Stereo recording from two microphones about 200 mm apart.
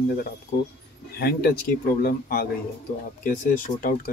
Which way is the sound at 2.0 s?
50° left (ahead or behind).